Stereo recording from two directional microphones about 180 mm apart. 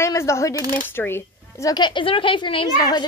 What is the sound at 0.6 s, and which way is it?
Speech, 25° right (ahead or behind).